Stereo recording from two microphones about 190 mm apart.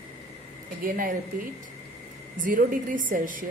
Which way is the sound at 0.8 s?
45° right (ahead or behind).